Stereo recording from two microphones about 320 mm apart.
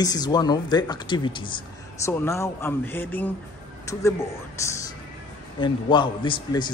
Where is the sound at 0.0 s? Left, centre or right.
Centre.